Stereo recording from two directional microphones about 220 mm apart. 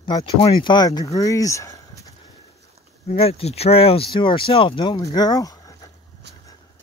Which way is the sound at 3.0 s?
25° left (ahead or behind).